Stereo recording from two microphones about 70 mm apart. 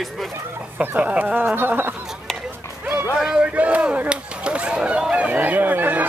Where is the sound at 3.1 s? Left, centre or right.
Centre.